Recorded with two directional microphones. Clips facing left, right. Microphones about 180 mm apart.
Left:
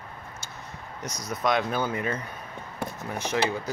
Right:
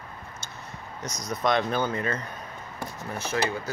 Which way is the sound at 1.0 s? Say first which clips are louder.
Right 1 dB; 10° left (ahead or behind).